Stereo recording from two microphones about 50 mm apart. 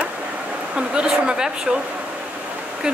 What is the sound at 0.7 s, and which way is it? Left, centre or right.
Speech, centre.